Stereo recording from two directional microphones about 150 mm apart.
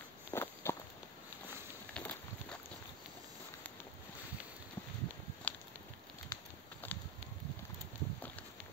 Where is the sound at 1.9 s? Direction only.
10° left (ahead or behind).